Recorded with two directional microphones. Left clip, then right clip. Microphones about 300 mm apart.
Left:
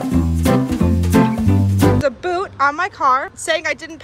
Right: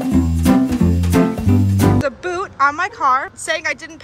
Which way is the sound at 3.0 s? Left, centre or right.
Centre.